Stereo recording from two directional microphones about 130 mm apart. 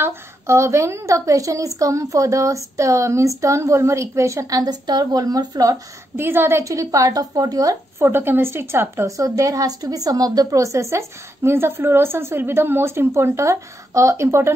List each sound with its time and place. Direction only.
0.0 s a woman's voice: 20° right (ahead or behind)
6.2 s a woman's voice: 15° right (ahead or behind)